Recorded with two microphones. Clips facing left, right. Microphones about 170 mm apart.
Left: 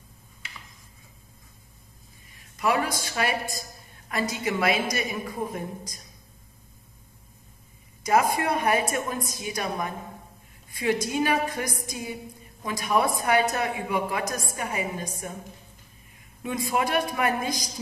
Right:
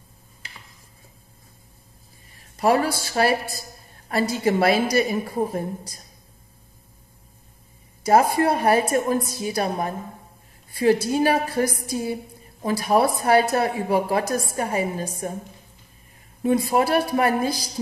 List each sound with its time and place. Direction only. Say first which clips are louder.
2.3 s a woman's voice: right 6 dB; 30° right (ahead or behind)
8.0 s a woman's voice: right 5 dB; 35° right (ahead or behind)
16.4 s a woman's voice: right 7 dB; 35° right (ahead or behind)